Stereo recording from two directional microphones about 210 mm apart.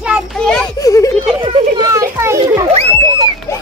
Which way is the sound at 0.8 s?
15° left (ahead or behind).